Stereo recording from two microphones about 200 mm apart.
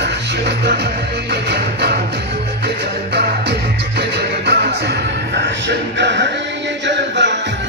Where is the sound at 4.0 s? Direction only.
55° right (ahead or behind).